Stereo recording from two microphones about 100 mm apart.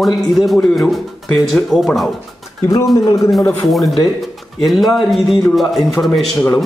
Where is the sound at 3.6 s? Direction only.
Centre (ahead or behind).